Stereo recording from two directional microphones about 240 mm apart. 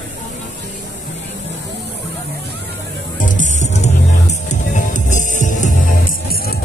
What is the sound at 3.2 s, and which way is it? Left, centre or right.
Music, left.